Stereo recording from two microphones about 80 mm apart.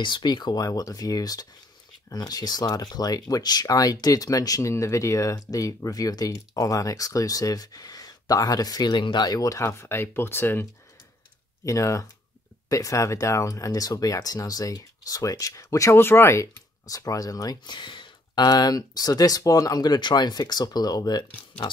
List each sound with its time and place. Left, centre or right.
0.0 s speech: left
0.7 s speech: left
8.9 s speech: left
11.6 s speech: left
16.0 s speech: left
16.8 s speech: left